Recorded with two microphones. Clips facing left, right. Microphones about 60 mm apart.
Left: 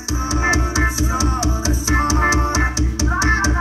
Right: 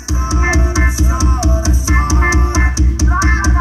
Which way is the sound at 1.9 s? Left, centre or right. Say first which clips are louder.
Right 1 dB; right.